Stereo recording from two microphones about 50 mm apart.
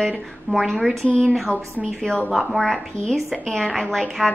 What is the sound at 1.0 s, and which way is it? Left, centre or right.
Speech, centre.